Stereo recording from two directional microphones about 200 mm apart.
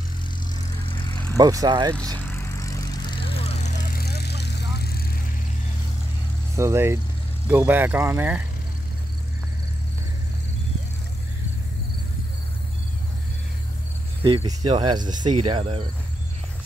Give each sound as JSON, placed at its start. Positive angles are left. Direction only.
{"t": 0.8, "sound": "vehicle", "side_deg": 25}
{"t": 1.3, "sound": "speech", "side_deg": -20}
{"t": 2.1, "sound": "vehicle", "side_deg": 10}
{"t": 3.9, "sound": "vehicle", "side_deg": 55}
{"t": 6.5, "sound": "speech", "side_deg": -15}
{"t": 14.2, "sound": "speech", "side_deg": -25}